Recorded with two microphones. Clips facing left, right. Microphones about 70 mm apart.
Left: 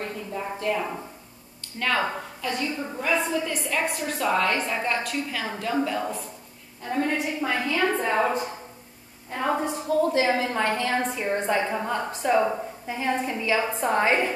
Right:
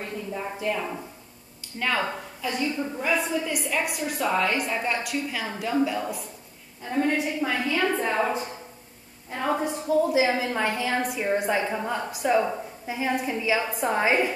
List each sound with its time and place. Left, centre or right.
0.0 s a sound: centre
0.7 s speech: centre
1.8 s a woman's voice: centre
9.3 s a woman's voice: centre
12.1 s a woman's voice: centre